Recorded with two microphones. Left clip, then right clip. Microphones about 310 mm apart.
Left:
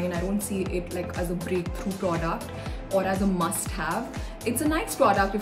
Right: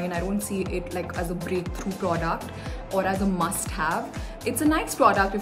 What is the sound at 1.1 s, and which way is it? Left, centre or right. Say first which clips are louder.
A woman's voice: left 1 dB; centre.